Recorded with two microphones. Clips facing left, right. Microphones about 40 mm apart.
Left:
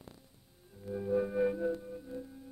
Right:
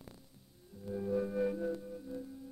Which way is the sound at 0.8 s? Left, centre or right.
Centre.